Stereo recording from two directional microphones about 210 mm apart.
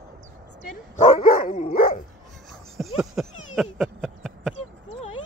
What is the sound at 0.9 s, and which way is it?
Dog, 35° left (ahead or behind).